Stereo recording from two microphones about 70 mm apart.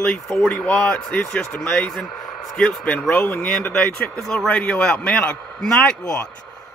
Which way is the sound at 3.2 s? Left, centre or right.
Left.